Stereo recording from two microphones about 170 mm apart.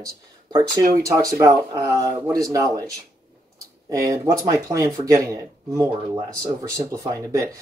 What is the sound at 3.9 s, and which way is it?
Speech, 20° right (ahead or behind).